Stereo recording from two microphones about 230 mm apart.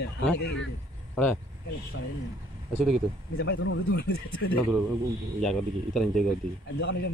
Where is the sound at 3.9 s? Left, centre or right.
Left.